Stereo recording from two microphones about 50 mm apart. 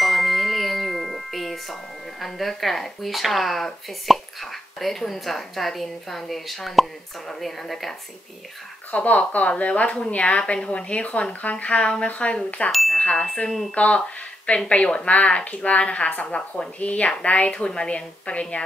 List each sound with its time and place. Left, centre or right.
0.0 s chime: centre
8.9 s speech: left
12.7 s chime: centre
13.0 s chime: left
13.5 s speech: centre
13.7 s speech: left